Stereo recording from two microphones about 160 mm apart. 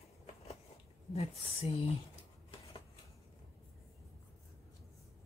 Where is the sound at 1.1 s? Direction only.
40° left (ahead or behind).